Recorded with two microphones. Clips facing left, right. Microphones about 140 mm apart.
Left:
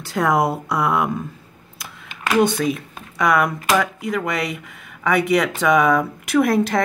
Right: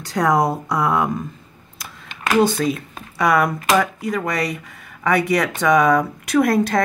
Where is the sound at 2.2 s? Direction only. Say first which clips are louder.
Right 1 dB; 5° right (ahead or behind).